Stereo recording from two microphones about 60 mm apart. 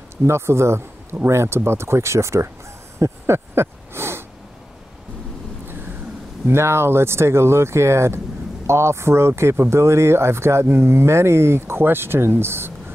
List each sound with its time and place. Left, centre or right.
0.2 s speech: right
3.0 s a sound: right
6.4 s speech: right